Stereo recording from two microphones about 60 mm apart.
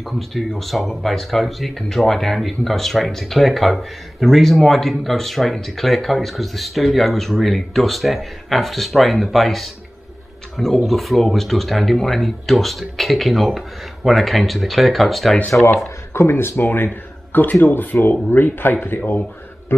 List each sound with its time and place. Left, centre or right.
0.0 s speech: centre
15.5 s speech: left
16.1 s speech: left